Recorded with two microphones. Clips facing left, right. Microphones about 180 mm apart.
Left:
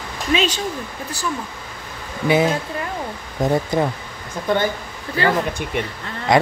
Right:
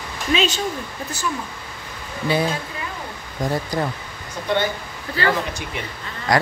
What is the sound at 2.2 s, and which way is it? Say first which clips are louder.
Speech: left 4 dB; 20° left (ahead or behind).